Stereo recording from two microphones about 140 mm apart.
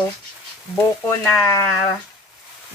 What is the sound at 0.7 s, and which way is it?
Speech, 20° left (ahead or behind).